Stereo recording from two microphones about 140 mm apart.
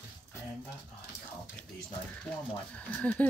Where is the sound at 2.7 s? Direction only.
10° left (ahead or behind).